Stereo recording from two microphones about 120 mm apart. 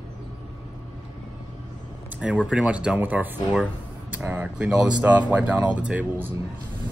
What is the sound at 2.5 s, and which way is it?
Speech, 10° right (ahead or behind).